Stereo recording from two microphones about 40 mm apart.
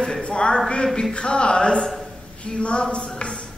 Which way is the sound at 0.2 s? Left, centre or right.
Left.